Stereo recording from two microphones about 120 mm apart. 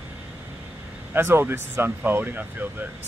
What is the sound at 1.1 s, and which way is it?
Speech, 20° right (ahead or behind).